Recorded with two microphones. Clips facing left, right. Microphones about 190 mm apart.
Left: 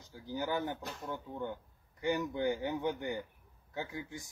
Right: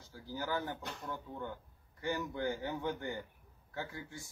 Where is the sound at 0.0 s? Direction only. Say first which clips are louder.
Left 4 dB; 20° left (ahead or behind).